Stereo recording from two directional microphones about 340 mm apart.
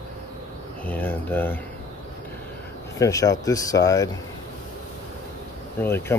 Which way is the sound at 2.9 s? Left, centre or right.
Centre.